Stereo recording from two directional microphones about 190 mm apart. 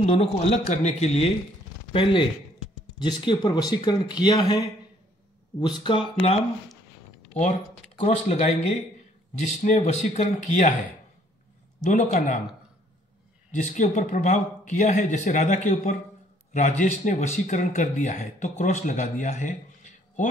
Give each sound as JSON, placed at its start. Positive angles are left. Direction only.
{"t": 0.0, "sound": "speech", "side_deg": 35}
{"t": 5.9, "sound": "speech", "side_deg": 30}
{"t": 8.0, "sound": "speech", "side_deg": 35}
{"t": 11.8, "sound": "speech", "side_deg": 40}
{"t": 13.5, "sound": "speech", "side_deg": 40}